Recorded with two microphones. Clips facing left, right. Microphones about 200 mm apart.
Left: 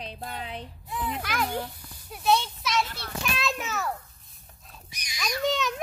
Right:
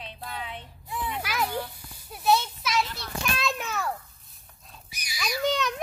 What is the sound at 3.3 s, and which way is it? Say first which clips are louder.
Children playing: even; centre (ahead or behind).